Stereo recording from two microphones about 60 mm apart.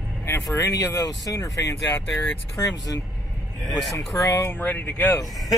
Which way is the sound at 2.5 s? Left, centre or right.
Left.